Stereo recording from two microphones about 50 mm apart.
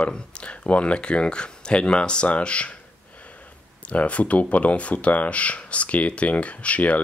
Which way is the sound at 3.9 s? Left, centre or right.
Left.